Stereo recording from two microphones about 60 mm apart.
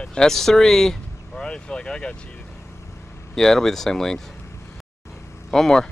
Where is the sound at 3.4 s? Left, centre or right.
Centre.